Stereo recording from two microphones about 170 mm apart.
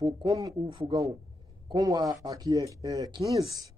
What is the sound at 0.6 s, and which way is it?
Speech, 30° right (ahead or behind).